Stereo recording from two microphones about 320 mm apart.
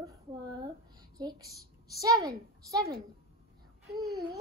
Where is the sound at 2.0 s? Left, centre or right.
Centre.